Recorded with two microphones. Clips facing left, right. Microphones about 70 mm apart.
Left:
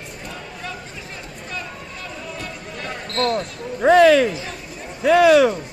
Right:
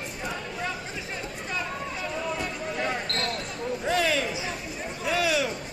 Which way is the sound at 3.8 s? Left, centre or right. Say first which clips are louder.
Left 15 dB; left.